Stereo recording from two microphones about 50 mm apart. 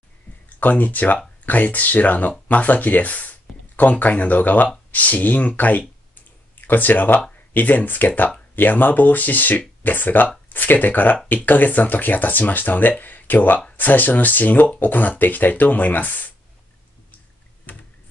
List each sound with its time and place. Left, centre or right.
0.6 s speech: left